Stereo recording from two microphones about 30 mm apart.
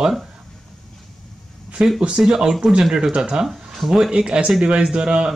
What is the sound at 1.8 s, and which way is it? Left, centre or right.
Speech, right.